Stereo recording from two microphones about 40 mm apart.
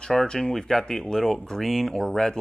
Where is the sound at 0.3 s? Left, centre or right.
Centre.